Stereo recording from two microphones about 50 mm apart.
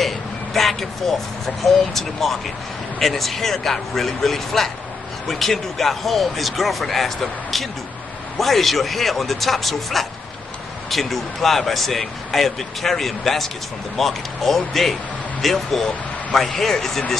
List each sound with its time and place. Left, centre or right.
0.0 s speech: centre